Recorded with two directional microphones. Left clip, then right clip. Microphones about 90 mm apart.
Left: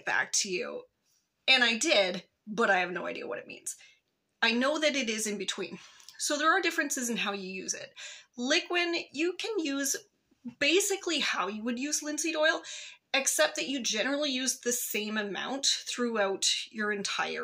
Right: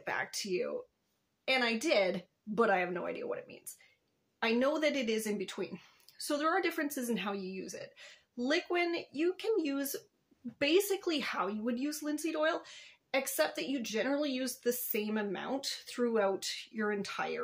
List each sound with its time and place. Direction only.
0.0 s speech: 30° right (ahead or behind); by 11.1 s 55° right (ahead or behind)
11.1 s speech: 40° right (ahead or behind)
16.0 s speech: 30° right (ahead or behind)